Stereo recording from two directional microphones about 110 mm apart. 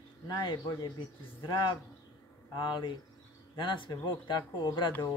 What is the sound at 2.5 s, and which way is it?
Speech, 45° left (ahead or behind).